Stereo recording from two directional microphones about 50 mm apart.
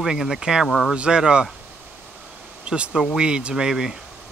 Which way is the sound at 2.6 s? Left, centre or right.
Right.